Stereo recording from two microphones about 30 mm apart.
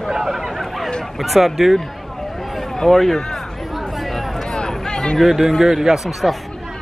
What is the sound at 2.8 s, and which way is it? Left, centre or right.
Speech, centre.